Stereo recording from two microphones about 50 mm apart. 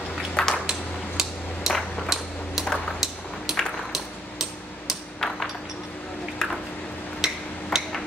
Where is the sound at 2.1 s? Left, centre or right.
Centre.